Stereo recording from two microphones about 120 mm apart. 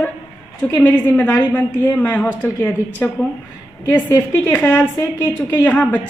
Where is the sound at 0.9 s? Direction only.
15° left (ahead or behind).